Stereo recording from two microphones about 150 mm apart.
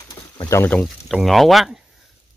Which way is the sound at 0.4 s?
20° left (ahead or behind).